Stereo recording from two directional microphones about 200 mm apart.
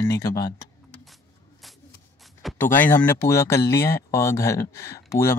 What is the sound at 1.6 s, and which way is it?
Shuffle, centre (ahead or behind).